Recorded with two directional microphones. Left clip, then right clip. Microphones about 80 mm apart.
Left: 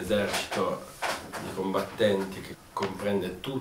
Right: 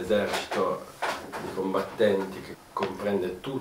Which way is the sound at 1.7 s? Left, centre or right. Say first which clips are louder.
Right 1 dB; left.